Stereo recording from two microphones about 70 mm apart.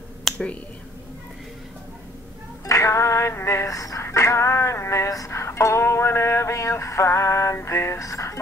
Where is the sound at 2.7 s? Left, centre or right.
Left.